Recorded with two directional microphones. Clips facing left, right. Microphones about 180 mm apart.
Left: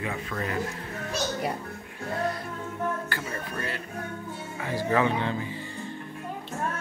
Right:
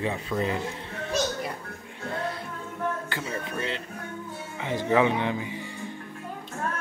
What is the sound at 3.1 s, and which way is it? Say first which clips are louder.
Music: right 1 dB; 20° right (ahead or behind).